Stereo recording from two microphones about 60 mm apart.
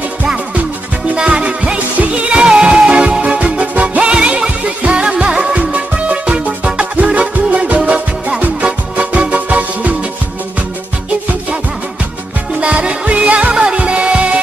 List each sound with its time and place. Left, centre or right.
1.1 s music: centre
12.5 s music: centre